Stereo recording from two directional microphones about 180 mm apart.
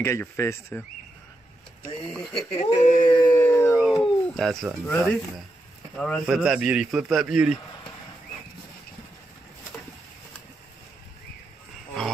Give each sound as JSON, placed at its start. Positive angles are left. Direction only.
{"t": 0.0, "sound": "speech", "side_deg": 15}
{"t": 2.3, "sound": "speech", "side_deg": 35}
{"t": 3.0, "sound": "dog", "side_deg": 20}
{"t": 3.3, "sound": "howl", "side_deg": 15}
{"t": 3.7, "sound": "speech", "side_deg": 0}